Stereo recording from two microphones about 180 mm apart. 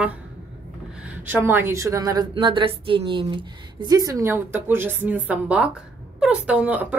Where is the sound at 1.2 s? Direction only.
10° right (ahead or behind).